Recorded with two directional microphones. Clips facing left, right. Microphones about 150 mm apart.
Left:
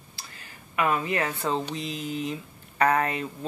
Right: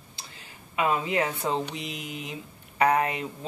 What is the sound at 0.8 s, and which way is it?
Speech, 20° right (ahead or behind).